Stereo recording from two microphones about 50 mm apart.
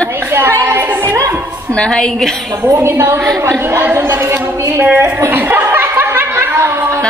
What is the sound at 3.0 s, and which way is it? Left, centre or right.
Speech, right.